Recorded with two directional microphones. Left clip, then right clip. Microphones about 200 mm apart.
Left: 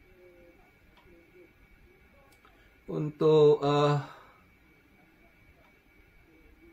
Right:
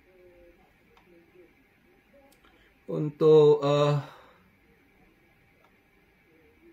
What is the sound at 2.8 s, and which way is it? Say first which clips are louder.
Speech: right 4 dB; 15° right (ahead or behind).